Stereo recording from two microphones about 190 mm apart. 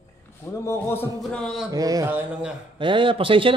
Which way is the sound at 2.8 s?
25° right (ahead or behind).